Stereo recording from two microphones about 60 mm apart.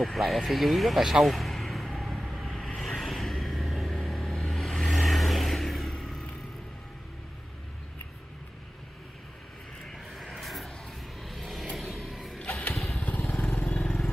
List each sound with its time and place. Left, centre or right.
0.0 s a sound: centre
2.5 s music: centre
4.9 s vehicle: centre
10.1 s a sound: centre
11.2 s vehicle: centre
11.7 s music: centre
12.7 s motorcycle: centre
13.3 s vehicle: centre